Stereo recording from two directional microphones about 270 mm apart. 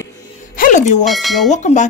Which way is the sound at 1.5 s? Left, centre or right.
Left.